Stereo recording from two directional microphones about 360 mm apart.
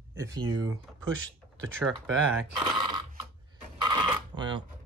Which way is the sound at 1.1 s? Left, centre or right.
Right.